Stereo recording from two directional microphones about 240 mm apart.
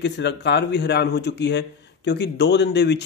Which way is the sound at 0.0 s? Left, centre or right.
Left.